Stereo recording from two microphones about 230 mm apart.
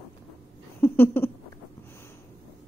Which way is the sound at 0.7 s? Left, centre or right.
Centre.